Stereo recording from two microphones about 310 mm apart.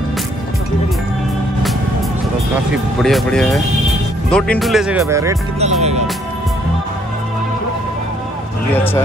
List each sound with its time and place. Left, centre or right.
2.7 s speech: centre
5.6 s speech: right